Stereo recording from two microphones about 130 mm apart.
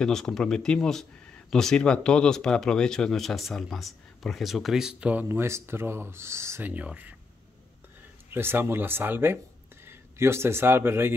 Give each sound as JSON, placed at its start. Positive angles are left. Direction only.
{"t": 0.0, "sound": "speech", "side_deg": 5}
{"t": 5.3, "sound": "speech", "side_deg": -20}
{"t": 8.3, "sound": "a man's voice", "side_deg": -15}